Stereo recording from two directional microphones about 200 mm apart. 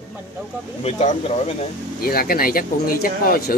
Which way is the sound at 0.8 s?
30° left (ahead or behind).